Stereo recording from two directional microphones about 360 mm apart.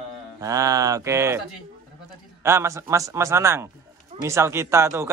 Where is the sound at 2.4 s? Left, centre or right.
Centre.